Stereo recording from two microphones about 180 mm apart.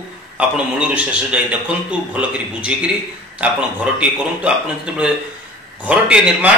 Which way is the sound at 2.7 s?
5° right (ahead or behind).